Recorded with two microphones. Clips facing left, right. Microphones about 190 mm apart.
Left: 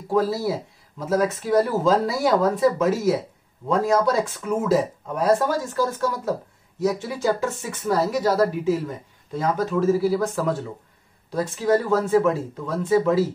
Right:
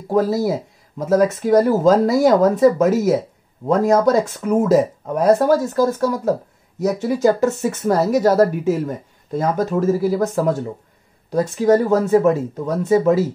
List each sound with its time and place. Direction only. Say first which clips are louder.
0.1 s speech: right 4 dB; 45° right (ahead or behind)